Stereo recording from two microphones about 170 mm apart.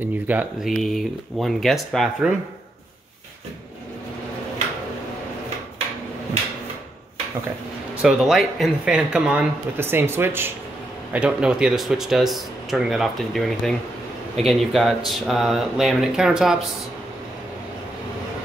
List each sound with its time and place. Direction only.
0.0 s speech: 10° right (ahead or behind)
8.0 s speech: 5° right (ahead or behind)